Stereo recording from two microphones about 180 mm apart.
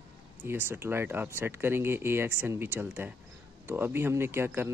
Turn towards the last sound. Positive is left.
turn(degrees=-15)  # may be behind; listen again after turning